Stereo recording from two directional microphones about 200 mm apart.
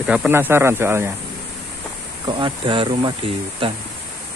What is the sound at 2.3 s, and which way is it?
Speech, 25° right (ahead or behind).